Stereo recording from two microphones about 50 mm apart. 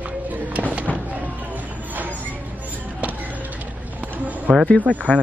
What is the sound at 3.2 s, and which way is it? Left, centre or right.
Vehicle, right.